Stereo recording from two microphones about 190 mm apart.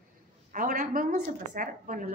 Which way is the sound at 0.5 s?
45° right (ahead or behind).